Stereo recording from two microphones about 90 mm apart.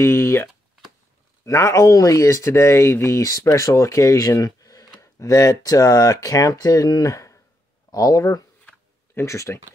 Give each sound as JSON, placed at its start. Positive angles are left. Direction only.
{"t": 0.0, "sound": "speech", "side_deg": 30}